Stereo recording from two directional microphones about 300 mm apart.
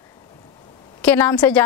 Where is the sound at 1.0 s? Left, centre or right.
Centre.